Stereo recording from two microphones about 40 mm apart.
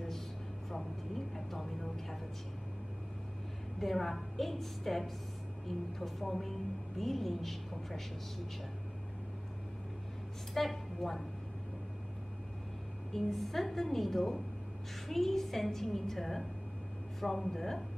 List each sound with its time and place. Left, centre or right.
0.7 s vehicle: centre
3.8 s a woman's voice: centre
10.5 s a woman's voice: centre
13.1 s a woman's voice: centre